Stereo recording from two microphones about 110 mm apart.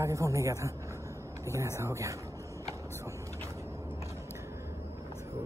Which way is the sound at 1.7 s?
25° right (ahead or behind).